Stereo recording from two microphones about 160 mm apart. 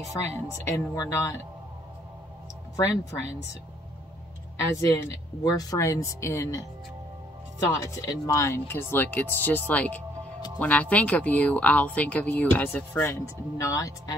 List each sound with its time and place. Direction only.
0.7 s speech: 20° left (ahead or behind)
2.7 s speech: 20° left (ahead or behind)
4.6 s speech: 20° left (ahead or behind)
7.8 s speech: 20° left (ahead or behind)